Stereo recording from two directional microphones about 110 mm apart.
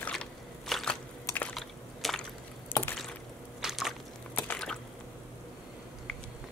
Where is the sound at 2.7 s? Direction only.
20° left (ahead or behind).